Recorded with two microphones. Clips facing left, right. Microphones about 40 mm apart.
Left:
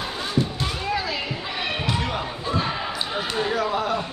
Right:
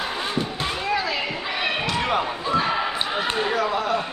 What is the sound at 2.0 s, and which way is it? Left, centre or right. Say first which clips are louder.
Basketball bounce: right 4 dB; right.